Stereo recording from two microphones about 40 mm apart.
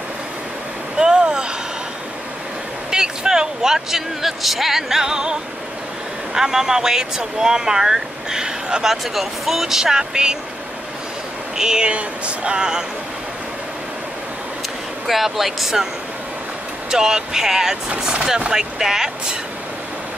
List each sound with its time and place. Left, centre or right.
0.9 s vehicle: right
2.9 s speech: centre
8.8 s speech: centre
11.5 s speech: centre
15.0 s speech: centre
16.9 s speech: centre